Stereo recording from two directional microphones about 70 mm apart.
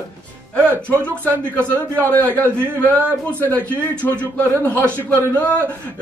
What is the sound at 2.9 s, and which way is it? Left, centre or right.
Speech, right.